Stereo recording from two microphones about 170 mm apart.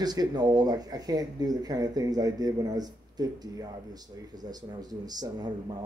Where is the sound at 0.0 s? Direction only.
25° right (ahead or behind).